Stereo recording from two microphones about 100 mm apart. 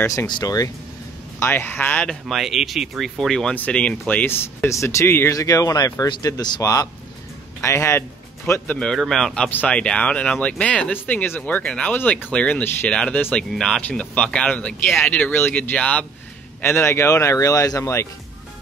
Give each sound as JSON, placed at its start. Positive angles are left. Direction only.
{"t": 0.0, "sound": "speech", "side_deg": 30}
{"t": 0.3, "sound": "speech", "side_deg": 40}
{"t": 1.4, "sound": "speech", "side_deg": 20}
{"t": 2.2, "sound": "speech", "side_deg": 0}
{"t": 8.7, "sound": "speech", "side_deg": 5}
{"t": 16.6, "sound": "speech", "side_deg": 25}